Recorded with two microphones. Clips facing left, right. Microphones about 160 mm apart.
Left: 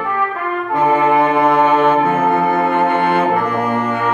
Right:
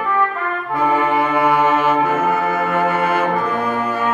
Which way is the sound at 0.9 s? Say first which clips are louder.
Left 4 dB; centre (ahead or behind).